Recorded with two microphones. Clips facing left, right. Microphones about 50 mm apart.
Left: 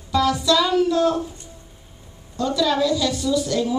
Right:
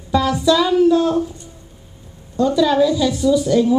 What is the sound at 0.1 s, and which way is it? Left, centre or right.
Speech, centre.